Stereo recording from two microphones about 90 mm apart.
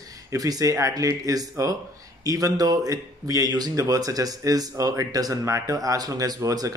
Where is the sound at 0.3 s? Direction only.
40° right (ahead or behind).